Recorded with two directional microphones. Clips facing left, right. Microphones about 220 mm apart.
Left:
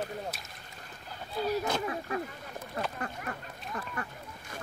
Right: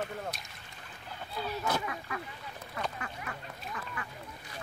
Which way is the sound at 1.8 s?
35° left (ahead or behind).